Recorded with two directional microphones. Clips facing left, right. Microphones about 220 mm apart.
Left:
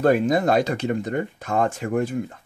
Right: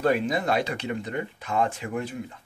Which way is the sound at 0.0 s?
45° left (ahead or behind).